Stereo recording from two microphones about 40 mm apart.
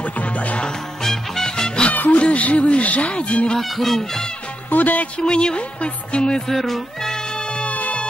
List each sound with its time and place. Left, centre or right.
1.0 s music: centre
1.9 s music: left
2.1 s speech: left
3.5 s music: centre
4.6 s music: left
5.2 s music: left
6.5 s speech: centre
7.6 s music: left